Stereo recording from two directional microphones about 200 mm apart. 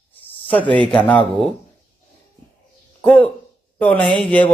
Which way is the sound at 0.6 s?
25° right (ahead or behind).